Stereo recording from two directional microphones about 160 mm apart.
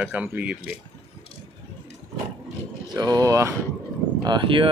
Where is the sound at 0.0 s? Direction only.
10° right (ahead or behind).